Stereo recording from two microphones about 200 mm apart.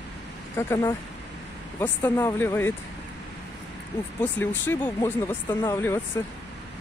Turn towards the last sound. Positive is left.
turn(degrees=15)  # may be behind; listen again after turning